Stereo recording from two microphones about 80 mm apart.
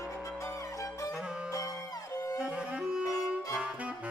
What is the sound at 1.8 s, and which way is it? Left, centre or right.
Music, left.